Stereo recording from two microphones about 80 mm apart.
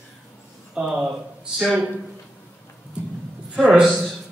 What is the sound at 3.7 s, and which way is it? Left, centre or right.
Speech, centre.